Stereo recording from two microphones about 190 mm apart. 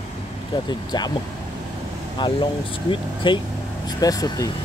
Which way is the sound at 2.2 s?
25° left (ahead or behind).